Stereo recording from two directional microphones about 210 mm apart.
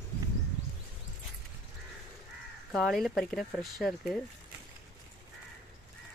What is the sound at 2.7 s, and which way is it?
Speech, centre (ahead or behind).